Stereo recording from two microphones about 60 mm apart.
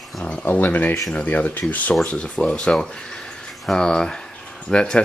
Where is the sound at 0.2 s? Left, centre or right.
Left.